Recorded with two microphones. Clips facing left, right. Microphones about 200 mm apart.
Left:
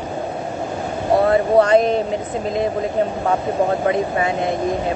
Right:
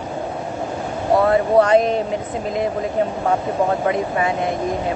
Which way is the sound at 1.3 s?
30° left (ahead or behind).